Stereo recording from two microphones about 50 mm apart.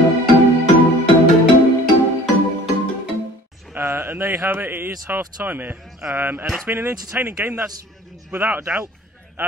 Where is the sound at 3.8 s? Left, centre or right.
Right.